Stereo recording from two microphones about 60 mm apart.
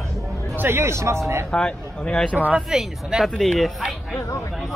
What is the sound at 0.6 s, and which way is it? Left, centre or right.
Speech, right.